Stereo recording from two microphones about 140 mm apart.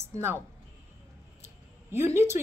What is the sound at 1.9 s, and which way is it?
Speech, 20° right (ahead or behind).